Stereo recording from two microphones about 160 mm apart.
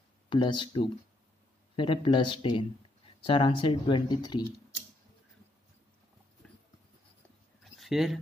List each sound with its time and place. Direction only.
0.3 s speech: 30° left (ahead or behind)
7.8 s speech: centre (ahead or behind)